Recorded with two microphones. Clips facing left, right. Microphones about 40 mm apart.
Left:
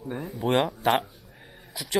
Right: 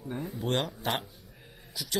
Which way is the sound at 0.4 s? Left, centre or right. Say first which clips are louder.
Left 8 dB; centre.